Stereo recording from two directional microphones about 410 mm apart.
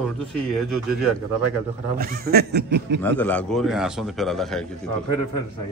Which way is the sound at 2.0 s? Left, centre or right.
Right.